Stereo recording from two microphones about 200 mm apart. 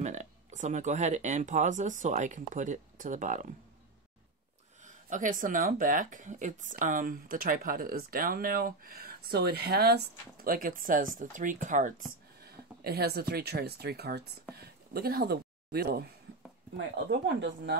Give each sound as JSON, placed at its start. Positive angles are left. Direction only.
{"t": 0.0, "sound": "speech", "side_deg": -35}
{"t": 4.8, "sound": "speech", "side_deg": -40}
{"t": 12.4, "sound": "speech", "side_deg": -50}